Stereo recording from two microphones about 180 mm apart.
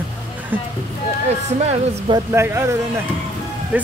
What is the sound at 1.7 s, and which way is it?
Speech, 25° right (ahead or behind).